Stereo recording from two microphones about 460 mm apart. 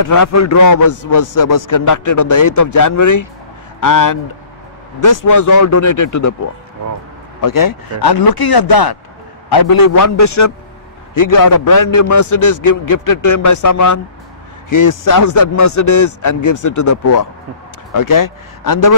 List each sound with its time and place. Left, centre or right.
0.0 s a man's voice: left
7.4 s a man's voice: left